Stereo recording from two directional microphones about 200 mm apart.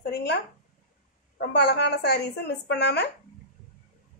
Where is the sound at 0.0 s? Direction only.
55° left (ahead or behind).